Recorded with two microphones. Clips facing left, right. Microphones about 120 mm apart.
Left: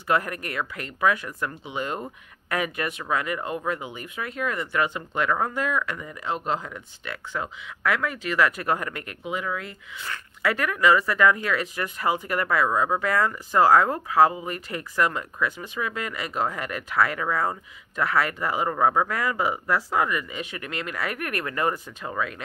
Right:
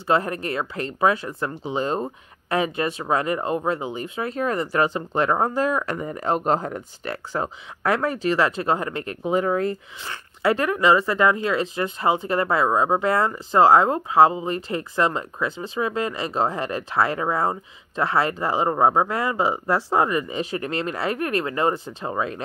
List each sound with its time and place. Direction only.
0.0 s speech: 30° right (ahead or behind)
10.0 s speech: 30° right (ahead or behind)